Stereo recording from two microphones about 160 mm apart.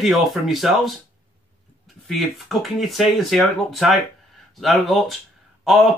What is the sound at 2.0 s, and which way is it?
Speech, centre (ahead or behind).